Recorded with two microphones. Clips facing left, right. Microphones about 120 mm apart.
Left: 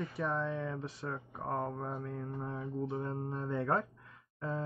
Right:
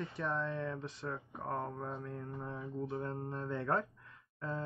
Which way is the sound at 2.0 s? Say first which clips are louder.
Left 3 dB; 5° left (ahead or behind).